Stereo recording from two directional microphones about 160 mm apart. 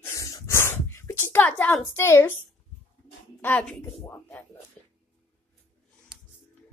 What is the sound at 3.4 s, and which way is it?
Speech, 10° left (ahead or behind).